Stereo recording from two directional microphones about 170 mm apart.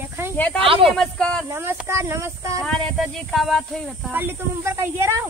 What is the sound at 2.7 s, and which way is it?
Speech, 5° left (ahead or behind).